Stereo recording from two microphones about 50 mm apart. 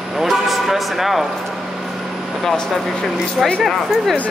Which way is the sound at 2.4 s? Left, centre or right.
Centre.